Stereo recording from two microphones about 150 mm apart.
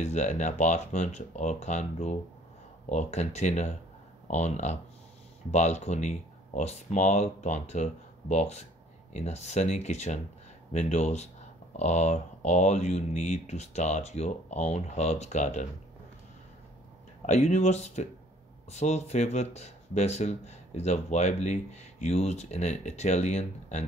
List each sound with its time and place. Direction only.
0.0 s speech: 50° left (ahead or behind)
17.3 s speech: 50° left (ahead or behind)